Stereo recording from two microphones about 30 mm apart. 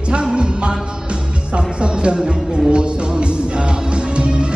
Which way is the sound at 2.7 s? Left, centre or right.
Right.